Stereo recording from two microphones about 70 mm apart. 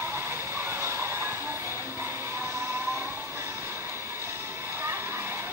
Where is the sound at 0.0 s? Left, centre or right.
Right.